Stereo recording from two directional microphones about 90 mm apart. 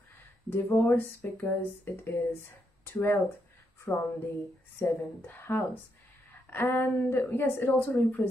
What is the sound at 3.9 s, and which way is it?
Speech, 20° left (ahead or behind).